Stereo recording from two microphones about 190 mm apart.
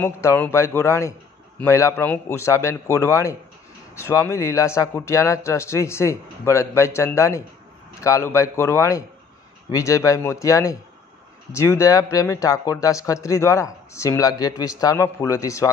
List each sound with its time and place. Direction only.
0.0 s speech: 10° left (ahead or behind)